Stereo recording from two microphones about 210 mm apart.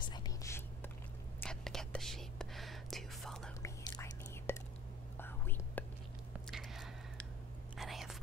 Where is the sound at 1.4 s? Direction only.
5° left (ahead or behind).